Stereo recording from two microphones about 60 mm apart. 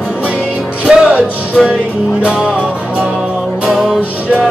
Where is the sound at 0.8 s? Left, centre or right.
Centre.